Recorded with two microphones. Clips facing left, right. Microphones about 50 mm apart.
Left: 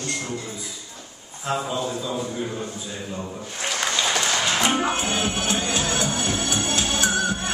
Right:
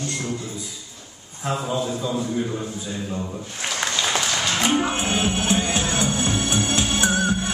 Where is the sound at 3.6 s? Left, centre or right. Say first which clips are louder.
Even; centre.